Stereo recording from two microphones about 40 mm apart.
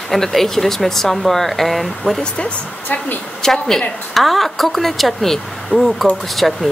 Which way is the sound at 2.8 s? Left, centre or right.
Left.